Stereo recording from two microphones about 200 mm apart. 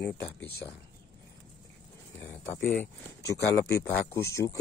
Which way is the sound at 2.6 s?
10° left (ahead or behind).